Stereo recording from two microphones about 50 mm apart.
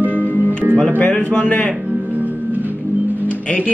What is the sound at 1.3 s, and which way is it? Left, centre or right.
Speech, left.